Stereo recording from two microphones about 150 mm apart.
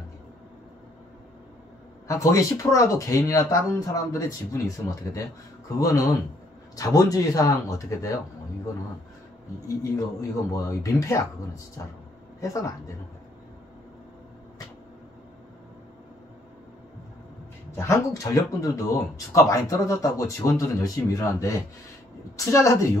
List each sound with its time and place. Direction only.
2.0 s speech: 20° left (ahead or behind)
10.5 s speech: 20° left (ahead or behind)
17.7 s speech: 20° left (ahead or behind)